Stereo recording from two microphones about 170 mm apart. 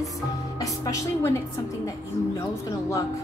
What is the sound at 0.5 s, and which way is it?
Speech, 20° left (ahead or behind).